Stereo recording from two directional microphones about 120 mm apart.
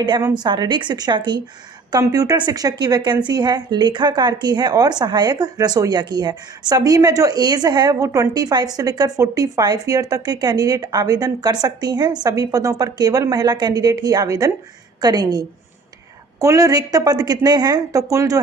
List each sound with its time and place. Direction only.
0.3 s a woman's voice: 35° right (ahead or behind)
1.9 s a woman's voice: 30° right (ahead or behind)